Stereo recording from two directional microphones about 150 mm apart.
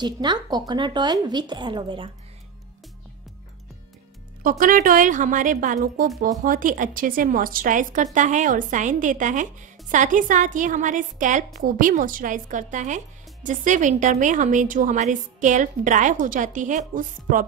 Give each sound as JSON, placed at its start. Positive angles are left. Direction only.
{"t": 0.0, "sound": "a woman's voice", "side_deg": -30}
{"t": 4.4, "sound": "a woman's voice", "side_deg": -65}